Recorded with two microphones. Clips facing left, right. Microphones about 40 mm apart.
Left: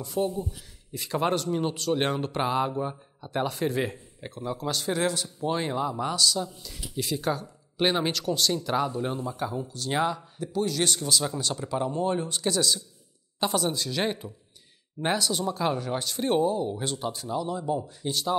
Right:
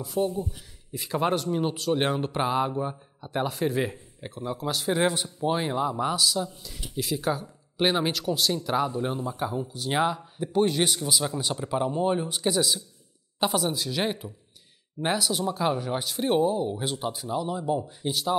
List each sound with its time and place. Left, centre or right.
0.0 s speech: centre
5.0 s speech: right
10.5 s a man's voice: right
11.1 s speech: centre